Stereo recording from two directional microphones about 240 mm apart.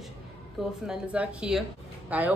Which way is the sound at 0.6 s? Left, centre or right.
Centre.